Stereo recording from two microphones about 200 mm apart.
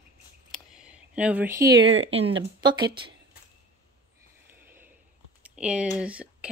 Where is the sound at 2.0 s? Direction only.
30° right (ahead or behind).